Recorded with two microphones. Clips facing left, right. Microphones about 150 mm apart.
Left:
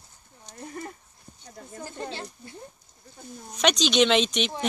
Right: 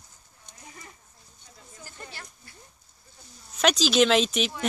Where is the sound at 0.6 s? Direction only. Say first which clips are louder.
Left 12 dB; 50° left (ahead or behind).